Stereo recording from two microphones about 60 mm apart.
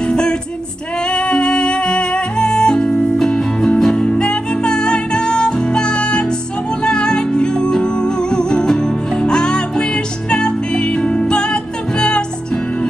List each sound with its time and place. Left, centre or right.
0.0 s music: centre